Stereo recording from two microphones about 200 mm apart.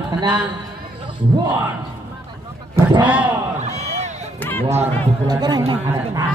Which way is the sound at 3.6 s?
35° right (ahead or behind).